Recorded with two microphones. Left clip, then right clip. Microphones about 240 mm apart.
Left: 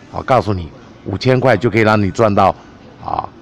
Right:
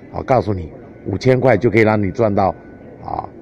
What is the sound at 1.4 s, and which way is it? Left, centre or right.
A man's voice, left.